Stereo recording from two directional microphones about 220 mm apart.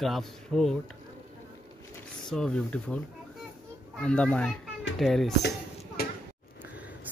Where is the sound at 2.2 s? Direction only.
Centre (ahead or behind).